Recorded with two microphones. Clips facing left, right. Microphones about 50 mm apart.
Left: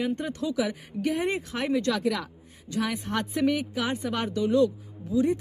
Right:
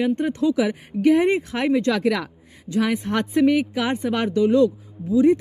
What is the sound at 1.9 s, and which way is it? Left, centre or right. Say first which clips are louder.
Speech: right 6 dB; right.